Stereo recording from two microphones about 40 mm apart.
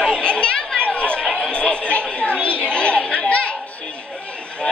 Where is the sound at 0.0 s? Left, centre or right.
Left.